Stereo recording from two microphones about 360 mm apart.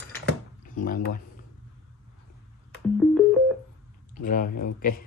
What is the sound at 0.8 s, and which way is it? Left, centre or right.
Speech, left.